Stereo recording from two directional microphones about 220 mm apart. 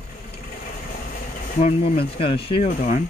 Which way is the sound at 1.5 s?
30° left (ahead or behind).